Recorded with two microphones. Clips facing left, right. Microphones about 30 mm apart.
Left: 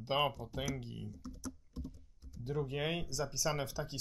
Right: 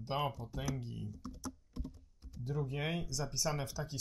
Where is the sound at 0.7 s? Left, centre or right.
Left.